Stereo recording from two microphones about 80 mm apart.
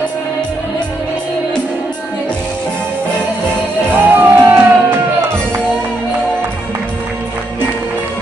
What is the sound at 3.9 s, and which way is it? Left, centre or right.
Music, right.